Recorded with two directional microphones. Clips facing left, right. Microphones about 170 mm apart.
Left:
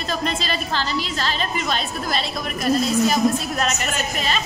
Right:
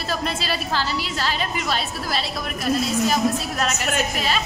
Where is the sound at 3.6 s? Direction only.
5° right (ahead or behind).